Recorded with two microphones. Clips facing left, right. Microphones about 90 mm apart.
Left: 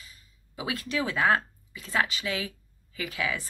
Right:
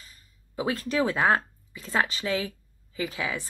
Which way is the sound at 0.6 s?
40° right (ahead or behind).